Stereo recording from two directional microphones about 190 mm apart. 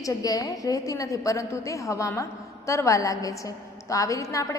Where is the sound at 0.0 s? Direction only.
20° left (ahead or behind).